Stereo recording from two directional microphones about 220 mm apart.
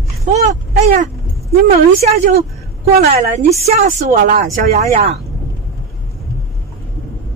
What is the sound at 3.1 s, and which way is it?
Speech, 30° right (ahead or behind).